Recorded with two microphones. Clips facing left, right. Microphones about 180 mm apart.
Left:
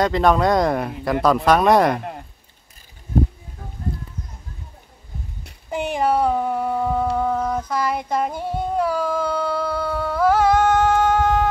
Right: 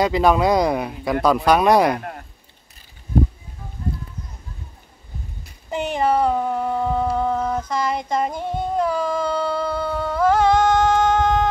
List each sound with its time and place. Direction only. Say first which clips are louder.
0.0 s speech: even; 5° right (ahead or behind)
2.0 s speech: left 1 dB; 20° left (ahead or behind)
5.7 s a sound: even; 10° left (ahead or behind)